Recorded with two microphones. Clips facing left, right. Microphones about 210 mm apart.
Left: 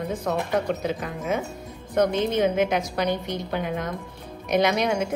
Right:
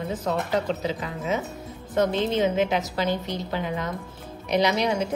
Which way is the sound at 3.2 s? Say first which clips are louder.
Left 1 dB; 50° left (ahead or behind).